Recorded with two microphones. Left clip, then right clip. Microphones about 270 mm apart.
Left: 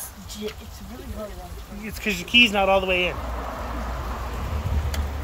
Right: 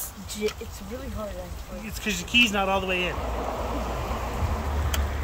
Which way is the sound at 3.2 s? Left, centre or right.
Right.